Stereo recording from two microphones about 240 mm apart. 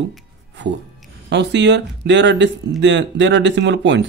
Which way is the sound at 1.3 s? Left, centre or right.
Right.